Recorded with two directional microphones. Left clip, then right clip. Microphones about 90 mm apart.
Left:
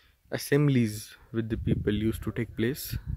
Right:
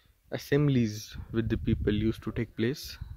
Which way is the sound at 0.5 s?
15° left (ahead or behind).